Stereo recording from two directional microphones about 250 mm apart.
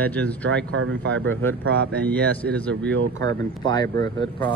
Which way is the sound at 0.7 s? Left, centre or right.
Right.